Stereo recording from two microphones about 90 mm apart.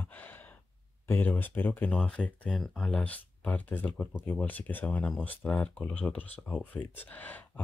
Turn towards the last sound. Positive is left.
turn(degrees=20)  # may be behind; listen again after turning